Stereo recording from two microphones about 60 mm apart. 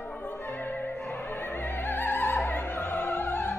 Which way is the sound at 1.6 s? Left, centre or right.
Left.